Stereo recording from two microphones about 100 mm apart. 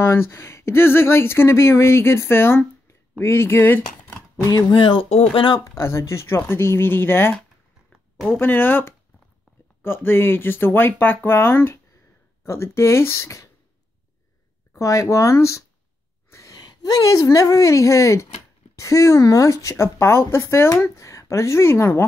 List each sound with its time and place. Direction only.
0.0 s speech: 25° left (ahead or behind)
4.5 s speech: 45° left (ahead or behind)
5.1 s speech: 90° left
5.6 s speech: 25° left (ahead or behind)
14.8 s speech: 35° left (ahead or behind)
16.3 s a sound: 30° left (ahead or behind)
16.5 s speech: 40° left (ahead or behind); by 22.0 s 25° left (ahead or behind)